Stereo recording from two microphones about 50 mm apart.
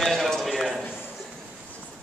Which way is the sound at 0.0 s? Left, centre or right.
Centre.